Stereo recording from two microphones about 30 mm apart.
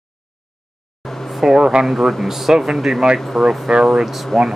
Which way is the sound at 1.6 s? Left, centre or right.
Right.